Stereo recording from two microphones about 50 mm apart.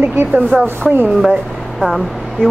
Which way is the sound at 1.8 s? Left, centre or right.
Centre.